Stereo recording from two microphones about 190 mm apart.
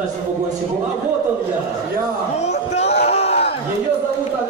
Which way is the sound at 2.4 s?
35° left (ahead or behind).